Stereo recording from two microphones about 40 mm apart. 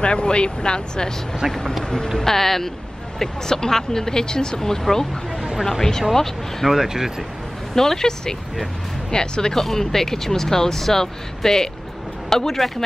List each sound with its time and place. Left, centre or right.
0.0 s speech: left
1.5 s speech: centre
6.7 s speech: centre
7.7 s speech: centre